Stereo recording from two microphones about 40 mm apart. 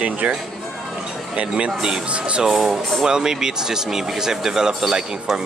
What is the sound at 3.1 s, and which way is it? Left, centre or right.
Speech, centre.